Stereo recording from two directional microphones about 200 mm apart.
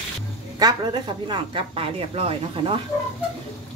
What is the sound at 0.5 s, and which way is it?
Speech, 20° right (ahead or behind).